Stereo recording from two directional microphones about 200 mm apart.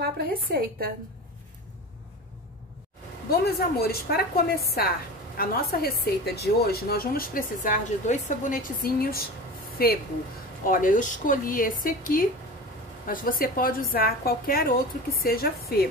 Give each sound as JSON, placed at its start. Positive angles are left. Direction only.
{"t": 0.0, "sound": "a woman's voice", "side_deg": -50}
{"t": 3.3, "sound": "a woman's voice", "side_deg": 50}